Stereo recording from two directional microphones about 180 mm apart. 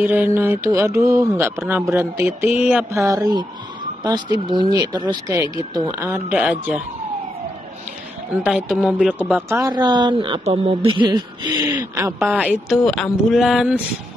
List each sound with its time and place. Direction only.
0.0 s speech: 10° right (ahead or behind)
2.4 s mantra: 35° left (ahead or behind)
2.7 s speech: 15° right (ahead or behind)
8.5 s speech: 5° right (ahead or behind)